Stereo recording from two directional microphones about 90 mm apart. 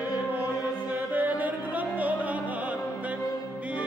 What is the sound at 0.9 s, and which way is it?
Music, 20° right (ahead or behind).